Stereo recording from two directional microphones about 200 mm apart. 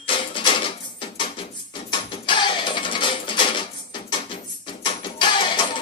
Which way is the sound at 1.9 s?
25° left (ahead or behind).